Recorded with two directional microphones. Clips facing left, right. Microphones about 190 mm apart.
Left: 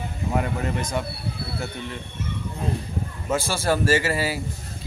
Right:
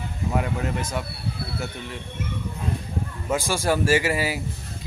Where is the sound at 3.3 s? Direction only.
15° right (ahead or behind).